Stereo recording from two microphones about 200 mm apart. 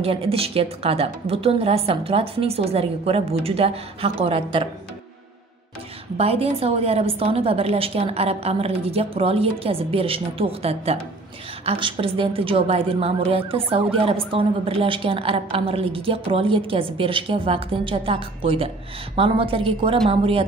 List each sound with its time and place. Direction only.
0.0 s a woman's voice: 30° right (ahead or behind)
6.1 s a woman's voice: 30° right (ahead or behind)